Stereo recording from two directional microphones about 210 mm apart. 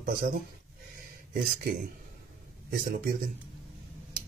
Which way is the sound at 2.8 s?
40° right (ahead or behind).